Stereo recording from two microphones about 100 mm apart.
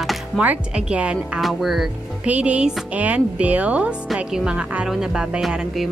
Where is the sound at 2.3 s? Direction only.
15° right (ahead or behind).